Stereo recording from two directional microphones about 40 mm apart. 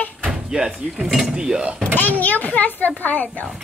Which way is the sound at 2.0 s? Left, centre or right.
Left.